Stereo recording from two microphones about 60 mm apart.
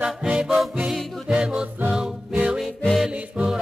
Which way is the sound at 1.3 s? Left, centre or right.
Centre.